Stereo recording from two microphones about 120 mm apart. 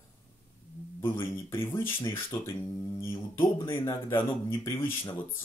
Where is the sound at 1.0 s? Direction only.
20° left (ahead or behind).